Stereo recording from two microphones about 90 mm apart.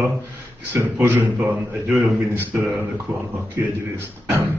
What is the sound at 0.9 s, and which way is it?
Speech, 30° right (ahead or behind).